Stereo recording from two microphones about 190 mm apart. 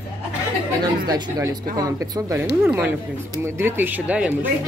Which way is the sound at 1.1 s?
20° right (ahead or behind).